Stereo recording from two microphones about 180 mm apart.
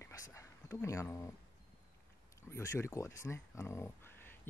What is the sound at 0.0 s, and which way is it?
Whispering, 15° left (ahead or behind).